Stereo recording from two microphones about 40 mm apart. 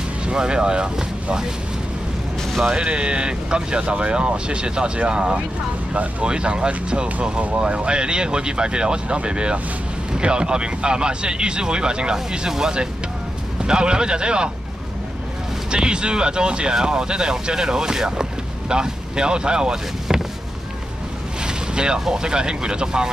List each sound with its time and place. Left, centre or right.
0.3 s speech: right
2.6 s speech: right
15.7 s speech: right
21.5 s boat: right
22.0 s speech: centre